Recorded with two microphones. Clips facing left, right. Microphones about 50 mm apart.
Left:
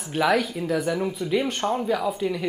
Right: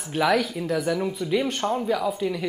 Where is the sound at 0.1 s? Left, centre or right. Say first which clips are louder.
Even; centre.